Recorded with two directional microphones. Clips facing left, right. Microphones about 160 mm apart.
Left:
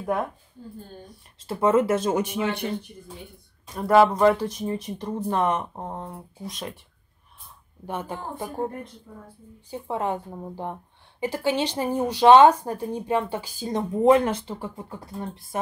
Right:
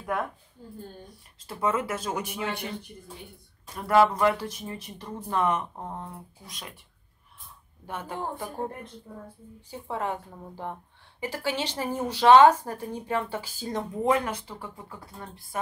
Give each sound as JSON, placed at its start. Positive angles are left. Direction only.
{"t": 1.5, "sound": "a woman's voice", "side_deg": 25}
{"t": 3.7, "sound": "a woman's voice", "side_deg": 20}
{"t": 7.8, "sound": "a woman's voice", "side_deg": 20}
{"t": 9.7, "sound": "a woman's voice", "side_deg": 20}